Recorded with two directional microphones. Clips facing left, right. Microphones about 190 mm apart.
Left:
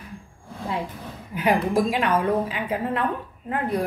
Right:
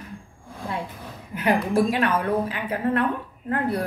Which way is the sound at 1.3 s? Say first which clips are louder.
Even; 15° left (ahead or behind).